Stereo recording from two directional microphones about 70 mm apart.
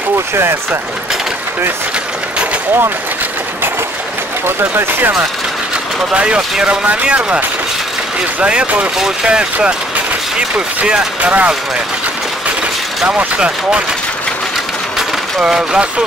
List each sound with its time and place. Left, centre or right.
4.5 s speech: right
6.1 s speech: centre
10.8 s speech: centre
15.0 s a sound: centre